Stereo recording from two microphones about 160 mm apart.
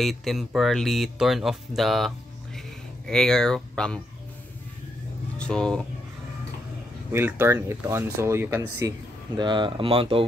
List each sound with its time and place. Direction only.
0.0 s speech: centre (ahead or behind)
5.4 s speech: 5° left (ahead or behind)
7.1 s speech: 15° right (ahead or behind); by 10.2 s 35° right (ahead or behind)